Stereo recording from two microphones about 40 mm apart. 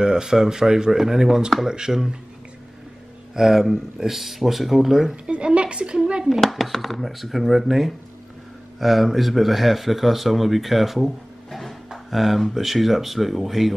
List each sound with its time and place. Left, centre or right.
0.0 s speech: centre
3.3 s speech: centre
5.1 s a woman's voice: right
6.4 s speech: centre